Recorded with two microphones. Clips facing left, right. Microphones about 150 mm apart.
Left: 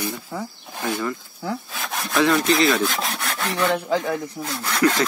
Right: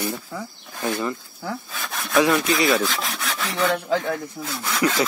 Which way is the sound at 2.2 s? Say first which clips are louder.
Left 4 dB; 15° right (ahead or behind).